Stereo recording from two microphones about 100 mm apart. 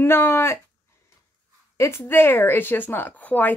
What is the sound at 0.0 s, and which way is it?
Speech, 25° left (ahead or behind).